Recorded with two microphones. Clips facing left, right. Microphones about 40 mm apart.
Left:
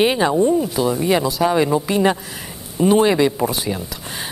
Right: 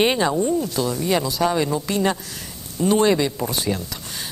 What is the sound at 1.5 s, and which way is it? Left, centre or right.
Speech, centre.